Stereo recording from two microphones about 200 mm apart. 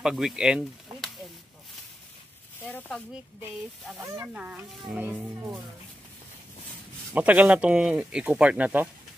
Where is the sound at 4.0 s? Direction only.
10° right (ahead or behind).